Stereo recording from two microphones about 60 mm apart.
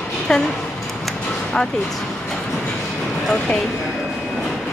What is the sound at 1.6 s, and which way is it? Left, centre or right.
Dishes, centre.